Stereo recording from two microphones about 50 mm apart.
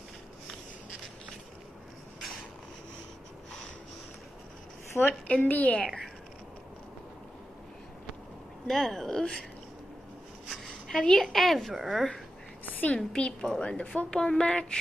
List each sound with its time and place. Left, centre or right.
4.9 s a woman's voice: left
5.3 s a woman's voice: left
8.6 s speech: centre
10.5 s a woman's voice: centre
12.9 s a woman's voice: centre